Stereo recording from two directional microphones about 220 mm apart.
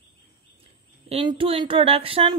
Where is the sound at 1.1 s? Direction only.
25° right (ahead or behind).